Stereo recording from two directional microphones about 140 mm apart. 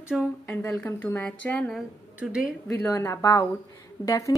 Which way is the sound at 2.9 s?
20° left (ahead or behind).